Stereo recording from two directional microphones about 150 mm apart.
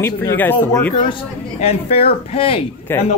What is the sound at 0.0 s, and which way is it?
Speech, 15° left (ahead or behind).